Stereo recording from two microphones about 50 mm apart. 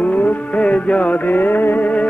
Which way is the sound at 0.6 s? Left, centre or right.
Left.